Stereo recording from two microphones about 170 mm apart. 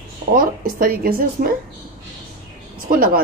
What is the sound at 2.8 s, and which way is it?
Speech, 55° right (ahead or behind).